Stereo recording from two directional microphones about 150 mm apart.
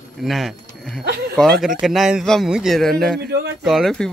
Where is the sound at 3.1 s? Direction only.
90° right.